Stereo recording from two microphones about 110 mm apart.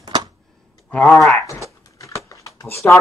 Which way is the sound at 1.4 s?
30° left (ahead or behind).